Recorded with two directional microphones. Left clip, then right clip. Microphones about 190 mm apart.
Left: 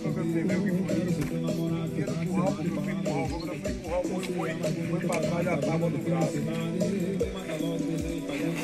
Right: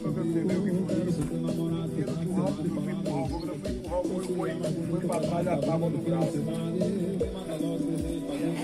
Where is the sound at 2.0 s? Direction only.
30° left (ahead or behind).